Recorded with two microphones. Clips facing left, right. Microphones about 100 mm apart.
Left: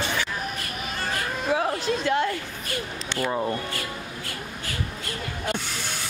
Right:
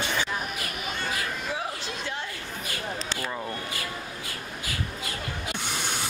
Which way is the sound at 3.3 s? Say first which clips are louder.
Left 11 dB; 25° left (ahead or behind).